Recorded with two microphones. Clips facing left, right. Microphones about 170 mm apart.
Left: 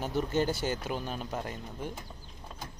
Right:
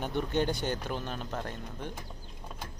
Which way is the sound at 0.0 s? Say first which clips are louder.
Left 1 dB; 5° left (ahead or behind).